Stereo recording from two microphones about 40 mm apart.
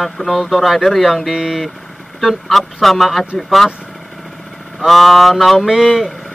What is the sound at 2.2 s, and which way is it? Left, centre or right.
Speech, centre.